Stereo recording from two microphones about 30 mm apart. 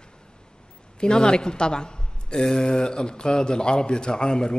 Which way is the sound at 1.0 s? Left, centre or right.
Left.